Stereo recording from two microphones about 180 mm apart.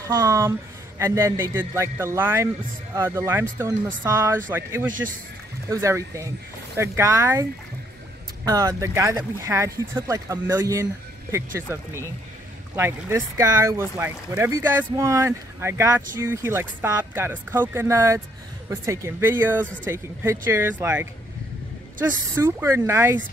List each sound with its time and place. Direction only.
0.0 s a man's voice: 20° right (ahead or behind)
8.5 s a man's voice: 20° right (ahead or behind)
22.3 s a man's voice: 15° right (ahead or behind)